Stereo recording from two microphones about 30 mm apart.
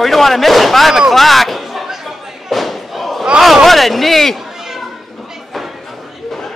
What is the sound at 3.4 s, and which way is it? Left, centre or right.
Speech, centre.